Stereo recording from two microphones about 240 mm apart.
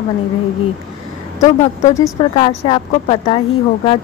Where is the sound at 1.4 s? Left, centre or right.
Left.